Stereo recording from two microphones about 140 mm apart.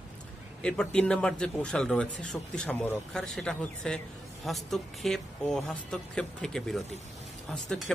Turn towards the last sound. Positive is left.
turn(degrees=0)  # may be behind; listen again after turning